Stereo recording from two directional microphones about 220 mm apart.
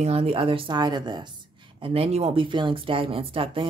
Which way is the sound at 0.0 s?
25° right (ahead or behind).